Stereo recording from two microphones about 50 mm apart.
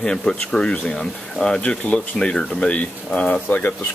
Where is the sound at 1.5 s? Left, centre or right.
Left.